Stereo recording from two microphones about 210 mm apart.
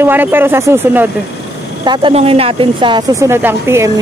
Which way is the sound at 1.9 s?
25° right (ahead or behind).